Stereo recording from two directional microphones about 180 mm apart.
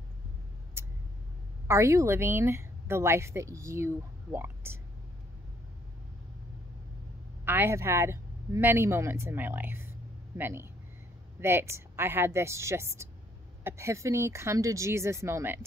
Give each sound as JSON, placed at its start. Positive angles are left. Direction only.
{"t": 0.8, "sound": "vehicle", "side_deg": -15}
{"t": 1.7, "sound": "a woman's voice", "side_deg": -15}
{"t": 7.4, "sound": "a woman's voice", "side_deg": -10}